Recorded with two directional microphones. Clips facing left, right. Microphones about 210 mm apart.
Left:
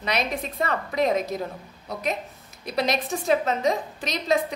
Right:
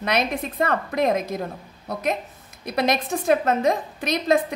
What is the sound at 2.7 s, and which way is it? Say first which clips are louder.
A woman's voice: right 3 dB; 55° right (ahead or behind).